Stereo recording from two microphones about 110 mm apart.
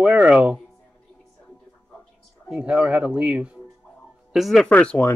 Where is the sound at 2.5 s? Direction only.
10° right (ahead or behind).